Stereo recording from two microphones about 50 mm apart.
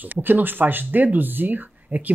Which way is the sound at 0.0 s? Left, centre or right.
Right.